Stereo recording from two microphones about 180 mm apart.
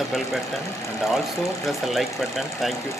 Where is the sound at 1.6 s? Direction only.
Centre (ahead or behind).